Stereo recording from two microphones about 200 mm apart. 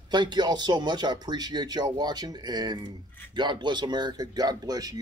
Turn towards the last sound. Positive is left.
turn(degrees=-20)  # may be behind; listen again after turning